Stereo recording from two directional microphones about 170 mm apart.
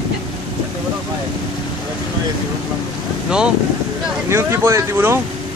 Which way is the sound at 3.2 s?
5° right (ahead or behind).